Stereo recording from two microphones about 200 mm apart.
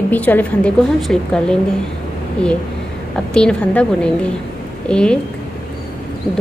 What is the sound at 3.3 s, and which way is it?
A woman's voice, 5° left (ahead or behind).